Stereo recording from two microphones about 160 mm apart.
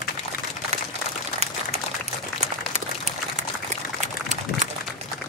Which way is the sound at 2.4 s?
45° right (ahead or behind).